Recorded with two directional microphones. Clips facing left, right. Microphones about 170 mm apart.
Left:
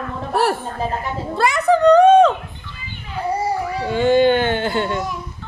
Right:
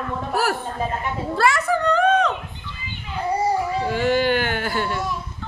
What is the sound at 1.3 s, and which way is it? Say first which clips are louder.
Speech: left 4 dB; 20° left (ahead or behind).